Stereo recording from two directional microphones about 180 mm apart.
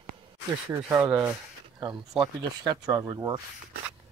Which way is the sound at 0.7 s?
15° right (ahead or behind).